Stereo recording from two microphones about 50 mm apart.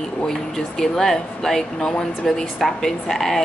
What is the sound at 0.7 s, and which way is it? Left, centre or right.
Speech, centre.